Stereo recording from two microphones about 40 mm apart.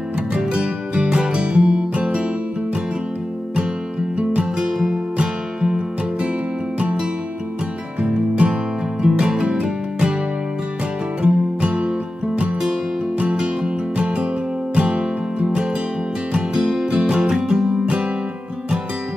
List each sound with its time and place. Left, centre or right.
0.3 s music: right
4.2 s music: right
4.6 s music: centre
6.8 s music: right
11.2 s music: right
13.2 s music: right; by 16.8 s centre
16.8 s music: right